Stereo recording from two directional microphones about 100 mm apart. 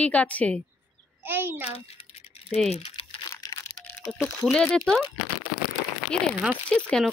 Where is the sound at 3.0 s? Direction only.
75° left (ahead or behind).